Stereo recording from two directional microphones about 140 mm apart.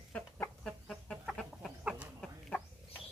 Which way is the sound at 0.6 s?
Centre (ahead or behind).